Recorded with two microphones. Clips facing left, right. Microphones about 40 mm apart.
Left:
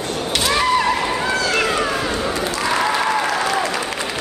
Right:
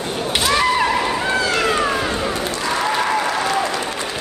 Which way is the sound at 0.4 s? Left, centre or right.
Centre.